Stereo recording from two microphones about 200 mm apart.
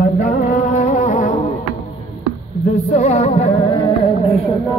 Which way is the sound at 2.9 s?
35° left (ahead or behind).